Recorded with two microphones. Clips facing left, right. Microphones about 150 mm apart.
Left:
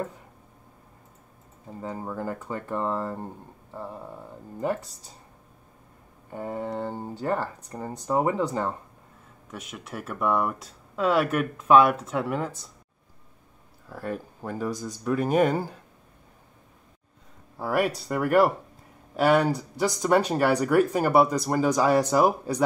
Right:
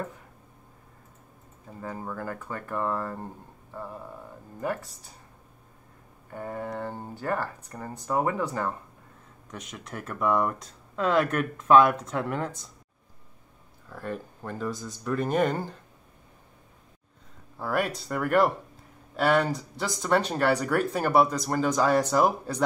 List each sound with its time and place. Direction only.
1.8 s speech: 20° left (ahead or behind)
6.3 s speech: 20° left (ahead or behind)
9.5 s speech: 5° left (ahead or behind)
13.8 s speech: 10° left (ahead or behind)
17.6 s speech: 5° left (ahead or behind)